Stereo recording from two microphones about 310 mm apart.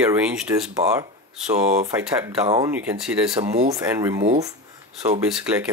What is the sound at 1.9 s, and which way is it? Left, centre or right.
Speech, centre.